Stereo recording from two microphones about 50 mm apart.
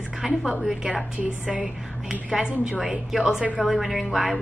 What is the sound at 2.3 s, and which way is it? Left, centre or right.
A woman's voice, centre.